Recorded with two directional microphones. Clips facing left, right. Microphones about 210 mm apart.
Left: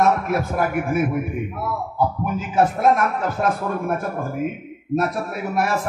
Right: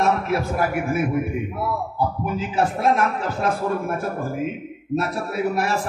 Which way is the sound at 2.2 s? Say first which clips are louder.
Left 3 dB; 50° left (ahead or behind).